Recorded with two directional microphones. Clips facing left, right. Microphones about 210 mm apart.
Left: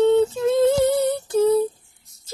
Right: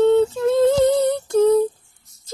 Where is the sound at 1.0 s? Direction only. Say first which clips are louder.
Right 3 dB; 5° left (ahead or behind).